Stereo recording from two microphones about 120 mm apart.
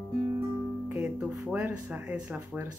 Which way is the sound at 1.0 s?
10° right (ahead or behind).